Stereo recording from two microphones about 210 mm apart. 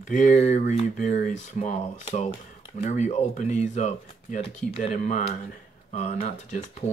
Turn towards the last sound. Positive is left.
turn(degrees=30)  # may be behind; listen again after turning